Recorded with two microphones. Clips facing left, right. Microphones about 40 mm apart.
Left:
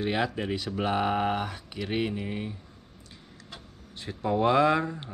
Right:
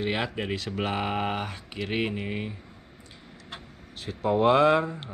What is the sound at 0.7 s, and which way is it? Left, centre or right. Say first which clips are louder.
Speech: left 4 dB; right.